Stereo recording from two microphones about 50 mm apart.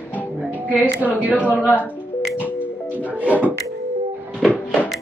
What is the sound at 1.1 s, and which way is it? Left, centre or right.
Speech, right.